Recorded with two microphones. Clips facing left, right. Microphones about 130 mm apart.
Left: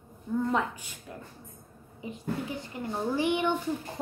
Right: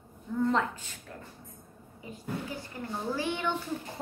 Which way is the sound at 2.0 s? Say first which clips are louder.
Left 3 dB; 20° left (ahead or behind).